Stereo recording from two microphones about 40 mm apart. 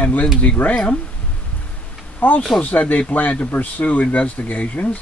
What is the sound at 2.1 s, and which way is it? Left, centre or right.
Speech, left.